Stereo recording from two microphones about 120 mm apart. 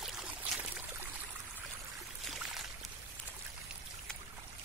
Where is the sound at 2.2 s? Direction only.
Centre (ahead or behind).